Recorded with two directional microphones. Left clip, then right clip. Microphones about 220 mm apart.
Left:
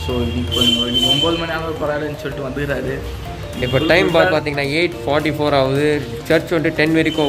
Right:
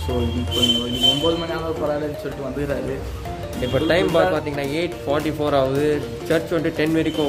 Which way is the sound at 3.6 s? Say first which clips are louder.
Left 4 dB; 10° left (ahead or behind).